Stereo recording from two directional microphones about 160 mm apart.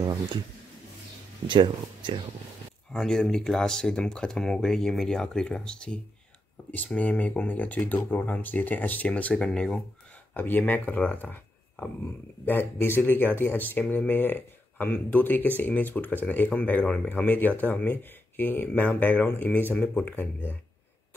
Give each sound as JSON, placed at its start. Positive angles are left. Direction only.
{"t": 1.5, "sound": "speech", "side_deg": -30}
{"t": 2.9, "sound": "speech", "side_deg": 5}
{"t": 12.4, "sound": "speech", "side_deg": 15}